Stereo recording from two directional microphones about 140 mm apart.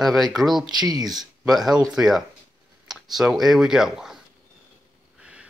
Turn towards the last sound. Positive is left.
turn(degrees=-5)  # may be behind; listen again after turning